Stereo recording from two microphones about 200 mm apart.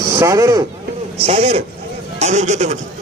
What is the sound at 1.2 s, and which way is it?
A man's voice, 30° right (ahead or behind).